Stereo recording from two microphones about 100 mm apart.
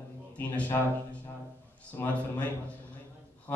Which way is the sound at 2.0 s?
20° left (ahead or behind).